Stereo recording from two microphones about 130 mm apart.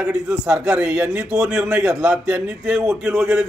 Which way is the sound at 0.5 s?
10° right (ahead or behind).